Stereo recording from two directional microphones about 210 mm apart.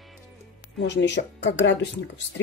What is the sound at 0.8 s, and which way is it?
Speech, 60° left (ahead or behind).